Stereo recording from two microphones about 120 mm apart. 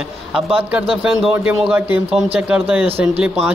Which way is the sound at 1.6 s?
10° right (ahead or behind).